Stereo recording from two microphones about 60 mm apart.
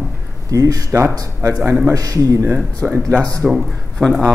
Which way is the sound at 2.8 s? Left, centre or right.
Right.